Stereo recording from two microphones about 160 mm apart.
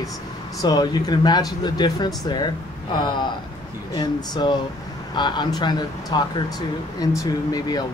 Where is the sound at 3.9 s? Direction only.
25° left (ahead or behind).